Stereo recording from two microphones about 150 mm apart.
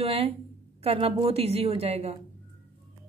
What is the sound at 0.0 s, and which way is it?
A woman's voice, 40° right (ahead or behind).